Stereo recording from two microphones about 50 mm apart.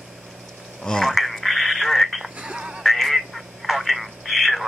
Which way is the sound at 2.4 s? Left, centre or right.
Centre.